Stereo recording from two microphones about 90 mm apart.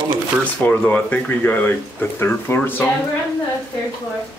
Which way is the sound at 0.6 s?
20° left (ahead or behind).